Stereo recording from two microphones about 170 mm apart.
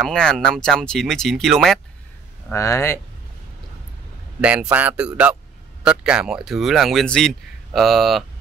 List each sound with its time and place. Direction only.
0.0 s speech: 5° left (ahead or behind)
2.5 s speech: 15° left (ahead or behind)
4.4 s speech: 10° right (ahead or behind)